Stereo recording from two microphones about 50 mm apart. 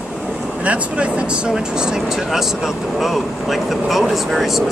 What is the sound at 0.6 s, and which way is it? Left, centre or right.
Speech, right.